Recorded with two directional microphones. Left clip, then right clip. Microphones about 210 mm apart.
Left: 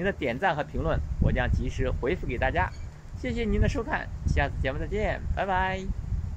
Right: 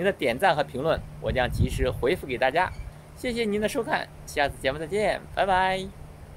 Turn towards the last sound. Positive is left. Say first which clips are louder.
# right 5 dB
turn(degrees=-15)  # may be behind; listen again after turning